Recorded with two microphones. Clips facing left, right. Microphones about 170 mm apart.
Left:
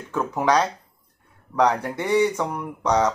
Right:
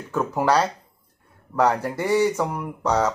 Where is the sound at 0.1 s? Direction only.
5° right (ahead or behind).